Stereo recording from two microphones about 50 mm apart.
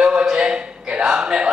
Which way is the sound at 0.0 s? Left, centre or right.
Centre.